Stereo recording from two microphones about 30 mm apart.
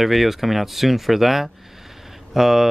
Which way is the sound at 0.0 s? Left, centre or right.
Centre.